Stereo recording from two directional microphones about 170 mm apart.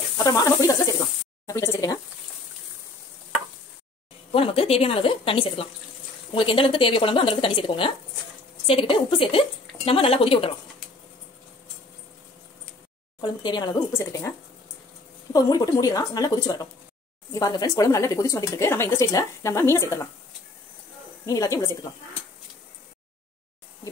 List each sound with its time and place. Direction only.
0.2 s speech: 20° left (ahead or behind)
4.3 s speech: 35° left (ahead or behind)
13.2 s speech: 25° left (ahead or behind)
15.3 s speech: 20° left (ahead or behind)
21.3 s speech: 20° left (ahead or behind)